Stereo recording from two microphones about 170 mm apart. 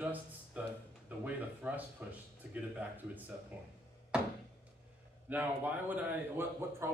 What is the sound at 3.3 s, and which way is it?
Speech, 15° right (ahead or behind).